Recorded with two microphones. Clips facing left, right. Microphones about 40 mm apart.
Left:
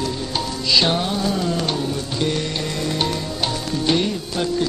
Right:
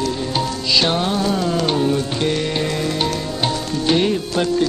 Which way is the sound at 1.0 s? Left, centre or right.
Centre.